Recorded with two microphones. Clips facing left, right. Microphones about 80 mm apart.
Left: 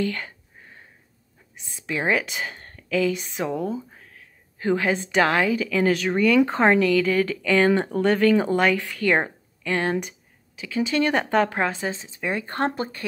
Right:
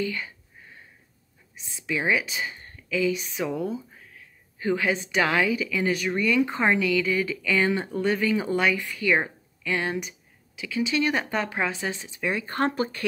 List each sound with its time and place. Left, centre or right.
0.0 s speech: left
1.7 s speech: left
7.9 s speech: left
8.5 s speech: left
8.7 s speech: left
9.2 s a sound: left
11.0 s speech: left